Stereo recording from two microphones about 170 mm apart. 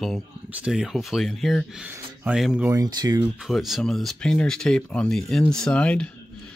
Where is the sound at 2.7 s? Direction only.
20° right (ahead or behind).